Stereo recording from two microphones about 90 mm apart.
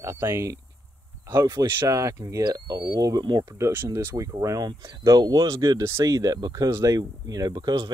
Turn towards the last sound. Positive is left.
turn(degrees=-50)  # may be behind; listen again after turning